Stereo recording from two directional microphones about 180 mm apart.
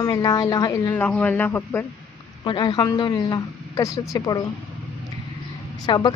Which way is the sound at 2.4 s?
25° left (ahead or behind).